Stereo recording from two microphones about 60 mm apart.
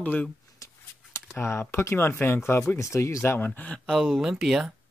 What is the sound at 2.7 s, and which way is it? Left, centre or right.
Speech, left.